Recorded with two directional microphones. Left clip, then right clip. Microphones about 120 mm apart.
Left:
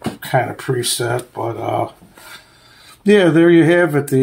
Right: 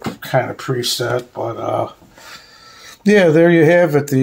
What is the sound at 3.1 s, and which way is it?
Speech, 45° right (ahead or behind).